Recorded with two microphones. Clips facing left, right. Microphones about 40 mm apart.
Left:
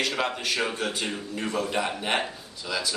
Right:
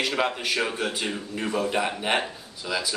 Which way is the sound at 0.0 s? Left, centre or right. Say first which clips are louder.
Right 2 dB; centre.